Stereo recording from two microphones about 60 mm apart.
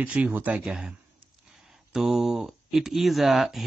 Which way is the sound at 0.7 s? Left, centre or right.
Centre.